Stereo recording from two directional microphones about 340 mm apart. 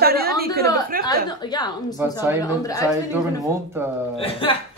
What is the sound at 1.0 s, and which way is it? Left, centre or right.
Speech, centre.